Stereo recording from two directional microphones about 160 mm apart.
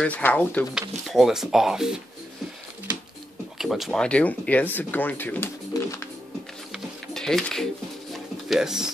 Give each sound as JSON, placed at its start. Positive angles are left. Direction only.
{"t": 0.0, "sound": "speech", "side_deg": 10}
{"t": 0.7, "sound": "speech", "side_deg": 0}
{"t": 3.5, "sound": "speech", "side_deg": 0}
{"t": 5.7, "sound": "music", "side_deg": 20}
{"t": 6.7, "sound": "music", "side_deg": 0}